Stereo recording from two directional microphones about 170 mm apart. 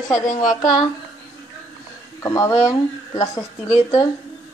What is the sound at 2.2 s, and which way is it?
A woman's voice, 20° left (ahead or behind).